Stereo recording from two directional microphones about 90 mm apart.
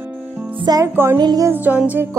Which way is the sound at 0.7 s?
50° right (ahead or behind).